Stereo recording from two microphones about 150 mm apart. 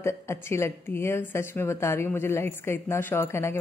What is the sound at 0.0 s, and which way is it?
A woman's voice, 20° left (ahead or behind).